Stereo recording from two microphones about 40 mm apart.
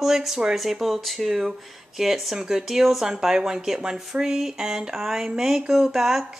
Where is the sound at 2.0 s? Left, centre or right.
Centre.